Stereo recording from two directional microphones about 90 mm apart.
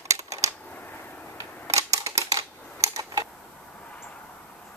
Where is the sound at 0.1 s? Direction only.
35° right (ahead or behind).